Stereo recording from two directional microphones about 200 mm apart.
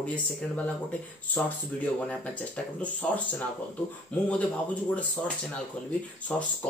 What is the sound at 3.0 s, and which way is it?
Speech, 5° left (ahead or behind).